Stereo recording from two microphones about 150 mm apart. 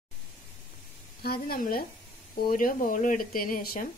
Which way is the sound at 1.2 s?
85° left.